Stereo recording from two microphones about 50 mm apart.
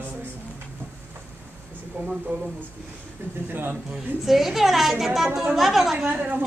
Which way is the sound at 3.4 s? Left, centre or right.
Right.